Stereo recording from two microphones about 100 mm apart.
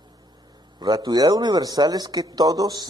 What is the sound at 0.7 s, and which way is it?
Speech, 40° right (ahead or behind).